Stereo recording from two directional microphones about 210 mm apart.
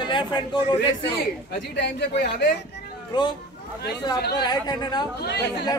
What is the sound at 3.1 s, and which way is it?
Speech, 20° left (ahead or behind).